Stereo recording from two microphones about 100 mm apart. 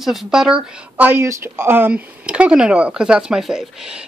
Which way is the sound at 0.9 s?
20° right (ahead or behind).